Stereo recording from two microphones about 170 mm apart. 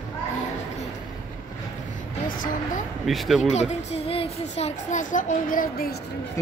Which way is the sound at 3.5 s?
40° left (ahead or behind).